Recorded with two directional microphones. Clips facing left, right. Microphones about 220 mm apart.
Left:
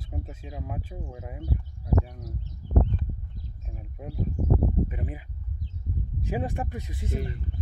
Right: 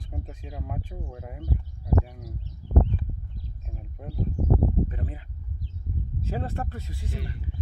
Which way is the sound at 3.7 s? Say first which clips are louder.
Left 1 dB; 5° left (ahead or behind).